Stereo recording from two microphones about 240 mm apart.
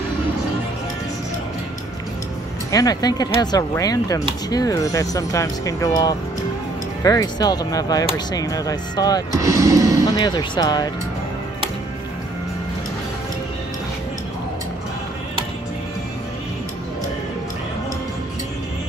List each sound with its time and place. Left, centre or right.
2.7 s speech: centre
9.3 s speech: centre
10.0 s speech: centre